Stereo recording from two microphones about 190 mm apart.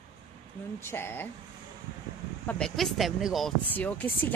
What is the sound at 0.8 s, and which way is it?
Speech, 10° left (ahead or behind).